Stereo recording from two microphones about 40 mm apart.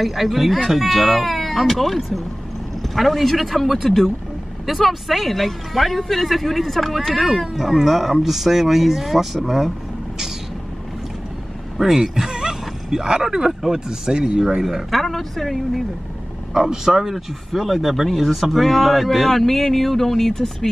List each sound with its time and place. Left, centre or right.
0.0 s speech: centre
11.8 s speech: centre
14.6 s speech: centre
16.5 s speech: centre